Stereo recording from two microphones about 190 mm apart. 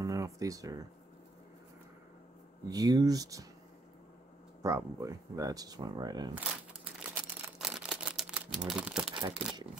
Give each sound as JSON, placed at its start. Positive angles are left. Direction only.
{"t": 0.0, "sound": "speech", "side_deg": -15}
{"t": 2.7, "sound": "speech", "side_deg": -20}
{"t": 4.6, "sound": "speech", "side_deg": -15}
{"t": 7.0, "sound": "camera", "side_deg": -5}
{"t": 9.3, "sound": "speech", "side_deg": 0}